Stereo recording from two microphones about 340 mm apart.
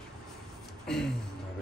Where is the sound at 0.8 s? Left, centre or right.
Centre.